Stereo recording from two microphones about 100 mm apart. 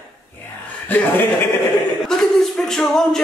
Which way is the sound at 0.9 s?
20° left (ahead or behind).